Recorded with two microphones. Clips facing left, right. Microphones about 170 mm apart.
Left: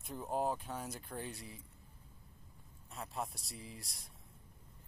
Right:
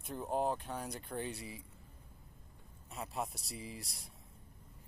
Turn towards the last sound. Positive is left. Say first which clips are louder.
# right 4 dB
turn(degrees=0)  # may be behind; listen again after turning